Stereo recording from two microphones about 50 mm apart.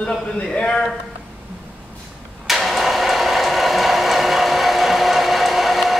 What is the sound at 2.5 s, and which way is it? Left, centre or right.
Vehicle, centre.